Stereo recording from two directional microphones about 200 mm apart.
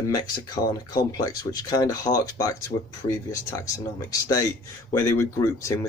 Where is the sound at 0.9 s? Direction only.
20° left (ahead or behind).